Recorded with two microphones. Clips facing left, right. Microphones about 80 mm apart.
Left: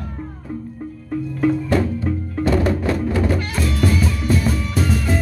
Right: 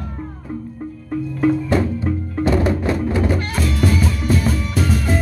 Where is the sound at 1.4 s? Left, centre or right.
Centre.